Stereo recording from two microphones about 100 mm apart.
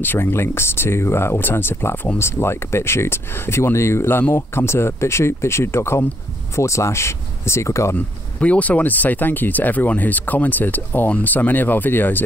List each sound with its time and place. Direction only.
0.0 s speech: 20° left (ahead or behind)
7.9 s speech: 15° left (ahead or behind)